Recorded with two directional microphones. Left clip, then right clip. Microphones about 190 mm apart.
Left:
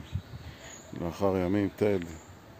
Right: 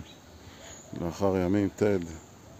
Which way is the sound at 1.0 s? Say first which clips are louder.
Right 1 dB; 10° right (ahead or behind).